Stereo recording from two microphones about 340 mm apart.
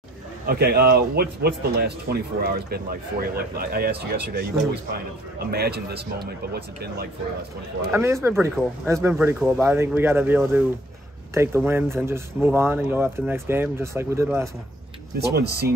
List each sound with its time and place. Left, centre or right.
0.5 s speech: right
7.9 s speech: centre
15.1 s speech: right